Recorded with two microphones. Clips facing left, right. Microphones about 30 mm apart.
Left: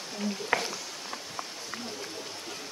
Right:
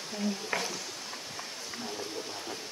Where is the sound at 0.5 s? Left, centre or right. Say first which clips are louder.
Left 6 dB; left.